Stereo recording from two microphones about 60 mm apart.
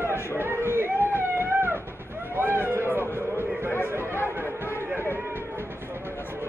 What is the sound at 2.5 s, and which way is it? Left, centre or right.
Run, right.